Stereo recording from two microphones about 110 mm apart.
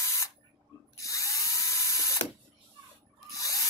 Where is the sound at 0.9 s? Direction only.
30° left (ahead or behind).